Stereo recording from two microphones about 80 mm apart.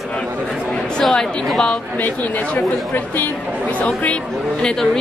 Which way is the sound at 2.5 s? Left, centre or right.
Left.